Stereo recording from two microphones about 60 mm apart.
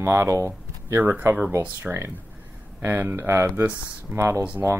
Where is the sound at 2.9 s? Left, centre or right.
Right.